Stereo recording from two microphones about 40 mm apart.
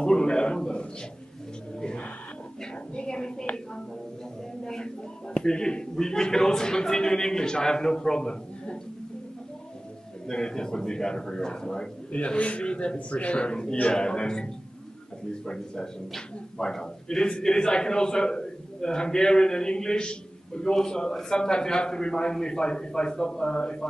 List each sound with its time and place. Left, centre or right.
0.0 s a sound: left
4.6 s speech: centre
10.2 s a man's voice: centre